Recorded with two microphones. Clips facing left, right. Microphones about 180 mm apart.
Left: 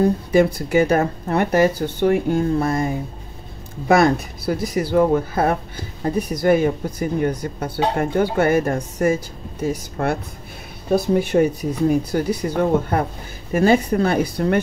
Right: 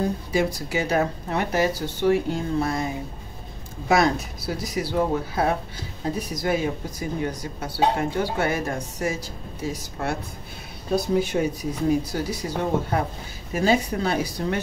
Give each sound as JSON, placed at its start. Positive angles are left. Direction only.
{"t": 0.3, "sound": "speech", "side_deg": 55}
{"t": 3.9, "sound": "speech", "side_deg": 55}